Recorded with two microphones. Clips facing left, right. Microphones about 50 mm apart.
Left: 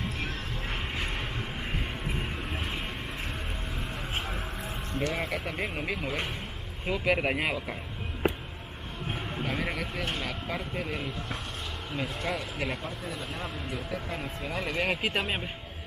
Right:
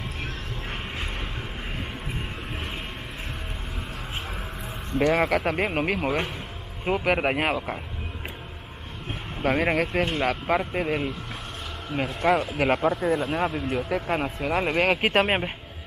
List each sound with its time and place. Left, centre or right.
0.2 s music: centre
5.1 s speech: right
9.4 s speech: right